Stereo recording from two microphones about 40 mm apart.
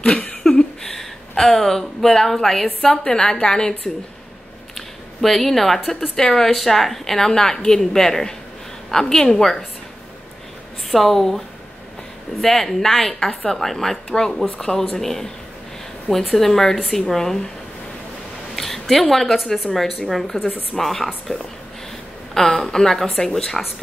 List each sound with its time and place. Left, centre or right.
0.0 s a sound: left
0.4 s speech: centre
4.7 s a woman's voice: centre
10.9 s a woman's voice: centre
13.0 s a woman's voice: centre
13.5 s a woman's voice: centre
18.6 s a woman's voice: centre
21.3 s a woman's voice: left